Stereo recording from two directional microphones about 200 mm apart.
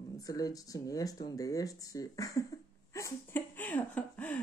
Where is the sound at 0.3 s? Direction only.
20° left (ahead or behind).